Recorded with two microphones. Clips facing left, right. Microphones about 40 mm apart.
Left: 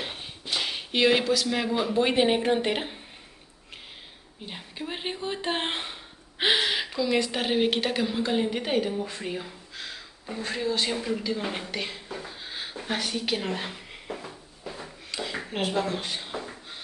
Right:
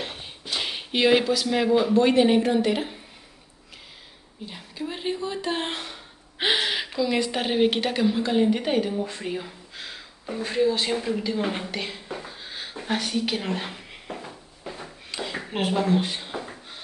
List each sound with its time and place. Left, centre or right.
0.0 s a sound: centre
0.6 s speech: centre
2.0 s speech: centre
2.5 s speech: left
4.5 s speech: left
6.3 s a woman's voice: centre
12.1 s beatboxing: centre
12.7 s a sound: centre